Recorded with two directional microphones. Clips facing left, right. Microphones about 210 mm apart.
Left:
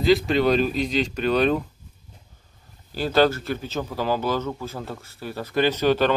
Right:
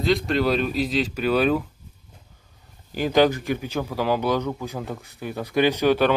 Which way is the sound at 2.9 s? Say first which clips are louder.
Right 1 dB; 15° right (ahead or behind).